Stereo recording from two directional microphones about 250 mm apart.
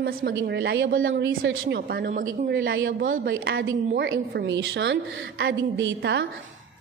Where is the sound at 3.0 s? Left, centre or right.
Right.